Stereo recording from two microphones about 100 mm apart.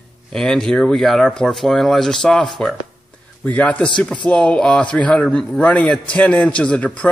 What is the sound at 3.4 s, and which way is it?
A man's voice, 15° left (ahead or behind).